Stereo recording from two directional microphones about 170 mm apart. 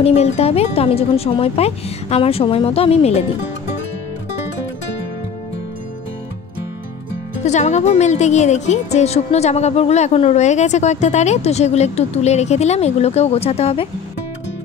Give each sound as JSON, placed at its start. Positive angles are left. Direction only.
{"t": 0.0, "sound": "a woman's voice", "side_deg": 40}
{"t": 7.4, "sound": "a woman's voice", "side_deg": 40}